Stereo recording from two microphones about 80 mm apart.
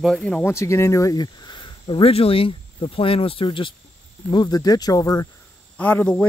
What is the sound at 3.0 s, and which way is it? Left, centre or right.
Speech, left.